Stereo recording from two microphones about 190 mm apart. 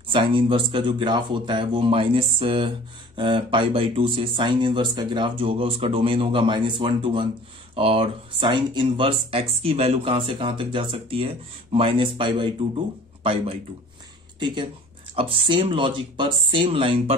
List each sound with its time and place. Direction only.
0.1 s speech: 25° right (ahead or behind)